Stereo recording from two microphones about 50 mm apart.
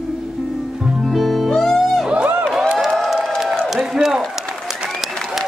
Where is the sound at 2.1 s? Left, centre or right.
Right.